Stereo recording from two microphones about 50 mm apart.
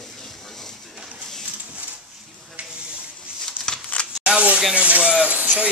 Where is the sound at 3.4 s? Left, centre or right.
Centre.